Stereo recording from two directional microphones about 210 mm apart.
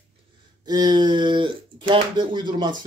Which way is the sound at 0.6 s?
20° right (ahead or behind).